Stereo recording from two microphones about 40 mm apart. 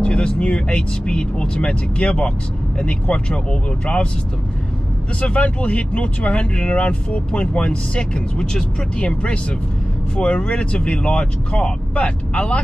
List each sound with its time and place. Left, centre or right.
0.0 s speech: left
5.2 s speech: left